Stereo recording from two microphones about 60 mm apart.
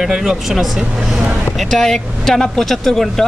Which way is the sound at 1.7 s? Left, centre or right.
Centre.